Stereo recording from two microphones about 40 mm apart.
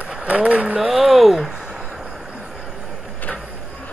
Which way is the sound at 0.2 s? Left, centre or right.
Right.